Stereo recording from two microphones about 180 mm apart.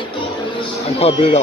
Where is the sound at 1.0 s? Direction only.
35° left (ahead or behind).